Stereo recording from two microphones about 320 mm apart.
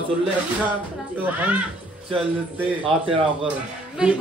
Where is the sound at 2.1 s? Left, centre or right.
Centre.